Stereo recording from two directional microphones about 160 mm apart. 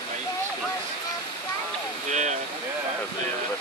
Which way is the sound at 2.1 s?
50° right (ahead or behind).